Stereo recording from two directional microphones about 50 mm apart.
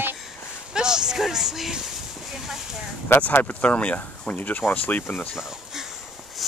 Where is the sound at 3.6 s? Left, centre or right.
Left.